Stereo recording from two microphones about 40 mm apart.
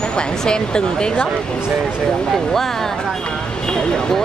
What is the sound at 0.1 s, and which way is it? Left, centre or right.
Speech, left.